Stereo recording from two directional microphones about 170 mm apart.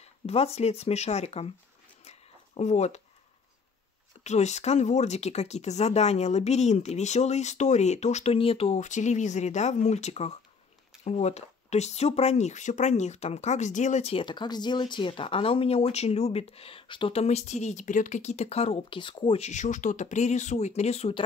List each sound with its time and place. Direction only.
0.0 s speech: 40° left (ahead or behind)
2.0 s a sound: 40° left (ahead or behind)
4.2 s speech: 40° left (ahead or behind)